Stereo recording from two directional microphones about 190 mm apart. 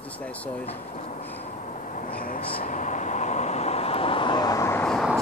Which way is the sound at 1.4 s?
40° left (ahead or behind).